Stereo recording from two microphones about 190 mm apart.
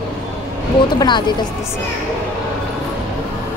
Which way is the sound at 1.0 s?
20° left (ahead or behind).